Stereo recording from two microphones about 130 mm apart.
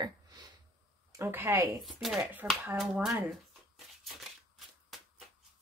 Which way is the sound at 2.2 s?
15° right (ahead or behind).